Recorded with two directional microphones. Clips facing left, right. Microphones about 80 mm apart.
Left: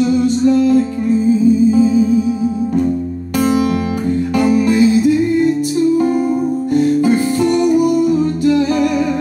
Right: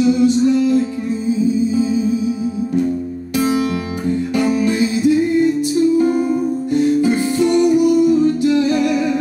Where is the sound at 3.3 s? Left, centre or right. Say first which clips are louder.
Left 3 dB; left.